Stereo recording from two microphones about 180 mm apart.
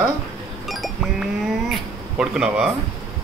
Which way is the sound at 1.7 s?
5° right (ahead or behind).